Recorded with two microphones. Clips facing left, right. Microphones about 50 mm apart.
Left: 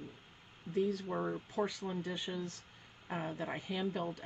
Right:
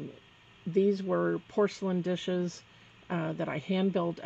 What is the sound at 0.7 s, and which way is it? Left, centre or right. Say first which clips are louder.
Speech: right 8 dB; right.